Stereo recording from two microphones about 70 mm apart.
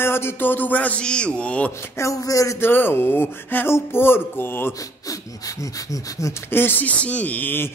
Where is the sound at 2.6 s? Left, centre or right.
Left.